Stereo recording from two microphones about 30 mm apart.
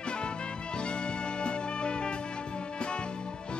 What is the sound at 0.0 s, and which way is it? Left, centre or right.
Music, left.